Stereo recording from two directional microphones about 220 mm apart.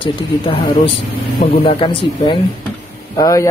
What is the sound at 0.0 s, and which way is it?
Speech, 25° left (ahead or behind).